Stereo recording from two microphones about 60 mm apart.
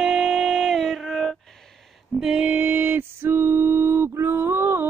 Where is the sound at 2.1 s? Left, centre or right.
Centre.